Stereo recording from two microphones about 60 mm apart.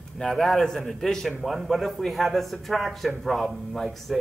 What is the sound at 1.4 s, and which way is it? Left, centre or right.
Speech, centre.